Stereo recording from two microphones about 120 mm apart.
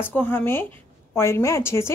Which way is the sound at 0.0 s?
15° left (ahead or behind).